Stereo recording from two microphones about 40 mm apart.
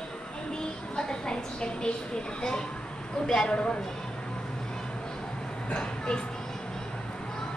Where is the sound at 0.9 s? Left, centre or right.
Centre.